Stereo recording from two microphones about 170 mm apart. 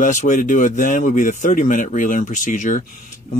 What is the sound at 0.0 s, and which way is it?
Speech, 50° left (ahead or behind).